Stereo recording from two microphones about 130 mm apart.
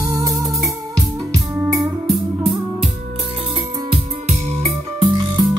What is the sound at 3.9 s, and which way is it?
Music, 45° right (ahead or behind).